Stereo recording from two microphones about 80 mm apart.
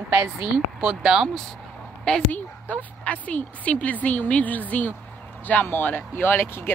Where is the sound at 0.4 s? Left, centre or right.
Centre.